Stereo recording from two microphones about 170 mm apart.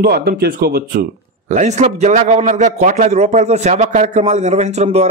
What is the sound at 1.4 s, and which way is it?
A man's voice, 45° right (ahead or behind).